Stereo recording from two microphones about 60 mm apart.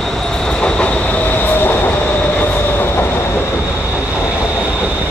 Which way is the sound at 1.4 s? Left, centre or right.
Left.